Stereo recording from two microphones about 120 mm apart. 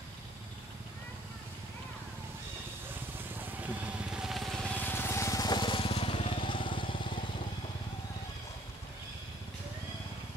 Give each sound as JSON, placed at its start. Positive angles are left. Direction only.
{"t": 3.3, "sound": "vehicle", "side_deg": -10}
{"t": 4.7, "sound": "vehicle", "side_deg": 15}